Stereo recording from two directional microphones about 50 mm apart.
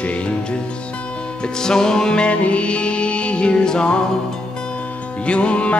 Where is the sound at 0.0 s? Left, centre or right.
Left.